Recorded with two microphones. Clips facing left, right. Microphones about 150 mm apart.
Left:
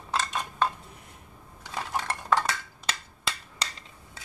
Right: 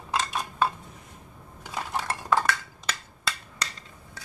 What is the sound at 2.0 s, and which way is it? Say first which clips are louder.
Dishes: even; centre (ahead or behind).